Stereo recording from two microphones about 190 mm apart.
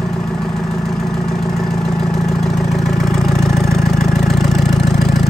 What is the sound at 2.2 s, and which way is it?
Vehicle, centre (ahead or behind).